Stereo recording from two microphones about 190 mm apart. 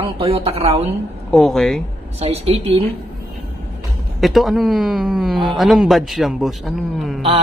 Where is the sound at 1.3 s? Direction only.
Centre (ahead or behind).